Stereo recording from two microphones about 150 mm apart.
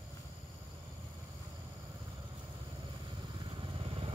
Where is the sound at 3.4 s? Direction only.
35° right (ahead or behind).